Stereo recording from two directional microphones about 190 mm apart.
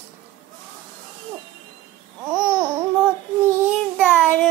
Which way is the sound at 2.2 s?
5° right (ahead or behind).